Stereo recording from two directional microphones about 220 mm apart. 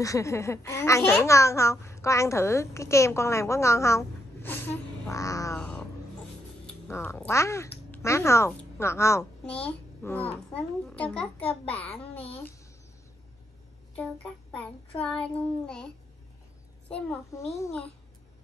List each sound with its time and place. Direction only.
0.0 s a child's voice: 15° left (ahead or behind)
11.4 s a child's voice: 25° left (ahead or behind)
15.0 s a child's voice: 5° left (ahead or behind)
16.9 s a child's voice: 5° left (ahead or behind)